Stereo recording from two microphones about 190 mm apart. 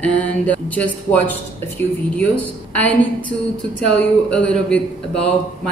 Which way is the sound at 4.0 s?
5° left (ahead or behind).